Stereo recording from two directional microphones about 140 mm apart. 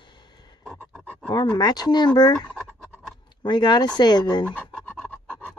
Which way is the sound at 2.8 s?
Centre (ahead or behind).